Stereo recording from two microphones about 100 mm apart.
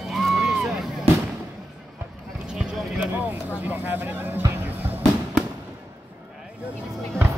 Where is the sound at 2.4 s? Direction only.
5° right (ahead or behind).